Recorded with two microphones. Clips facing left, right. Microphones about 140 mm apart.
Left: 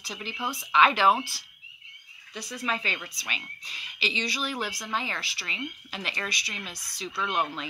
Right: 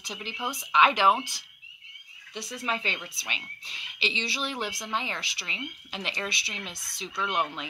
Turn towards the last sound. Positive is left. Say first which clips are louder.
# even
turn(degrees=-20)  # may be behind; listen again after turning